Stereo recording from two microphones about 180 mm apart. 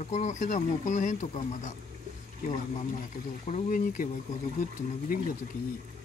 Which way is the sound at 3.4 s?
40° left (ahead or behind).